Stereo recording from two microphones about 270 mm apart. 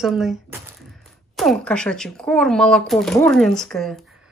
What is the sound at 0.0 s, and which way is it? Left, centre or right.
Speech, centre.